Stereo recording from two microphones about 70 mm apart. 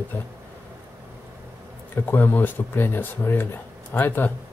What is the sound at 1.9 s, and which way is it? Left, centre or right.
Speech, left.